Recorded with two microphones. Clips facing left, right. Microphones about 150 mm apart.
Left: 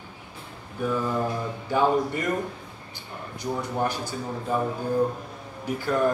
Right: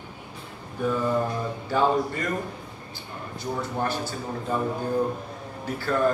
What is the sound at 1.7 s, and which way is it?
Speech, 15° left (ahead or behind).